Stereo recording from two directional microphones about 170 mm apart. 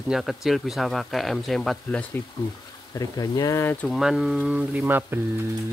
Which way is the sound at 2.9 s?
20° left (ahead or behind).